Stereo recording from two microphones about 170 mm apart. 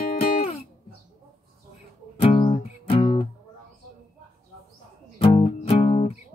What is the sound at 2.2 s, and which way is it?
Music, 30° left (ahead or behind).